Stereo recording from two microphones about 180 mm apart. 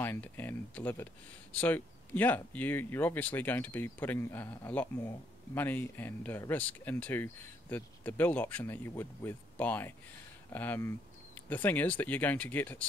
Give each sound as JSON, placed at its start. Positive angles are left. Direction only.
{"t": 0.0, "sound": "speech", "side_deg": 10}